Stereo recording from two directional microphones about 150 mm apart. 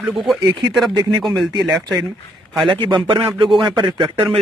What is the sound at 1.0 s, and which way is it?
Speech, 25° right (ahead or behind).